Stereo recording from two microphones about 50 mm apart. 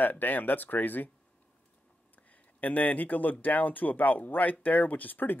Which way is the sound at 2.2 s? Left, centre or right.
Left.